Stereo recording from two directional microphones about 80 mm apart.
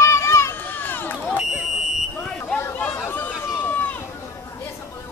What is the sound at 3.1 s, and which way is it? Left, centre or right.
Run, left.